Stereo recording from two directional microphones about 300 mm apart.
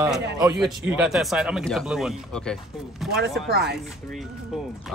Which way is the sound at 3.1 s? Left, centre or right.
Right.